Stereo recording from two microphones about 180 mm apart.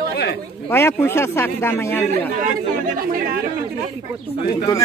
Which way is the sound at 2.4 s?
50° right (ahead or behind).